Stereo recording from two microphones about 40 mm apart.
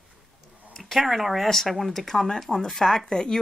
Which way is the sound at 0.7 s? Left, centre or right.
Centre.